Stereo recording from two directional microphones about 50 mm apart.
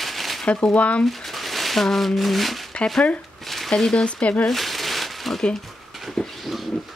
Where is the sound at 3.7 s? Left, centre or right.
Centre.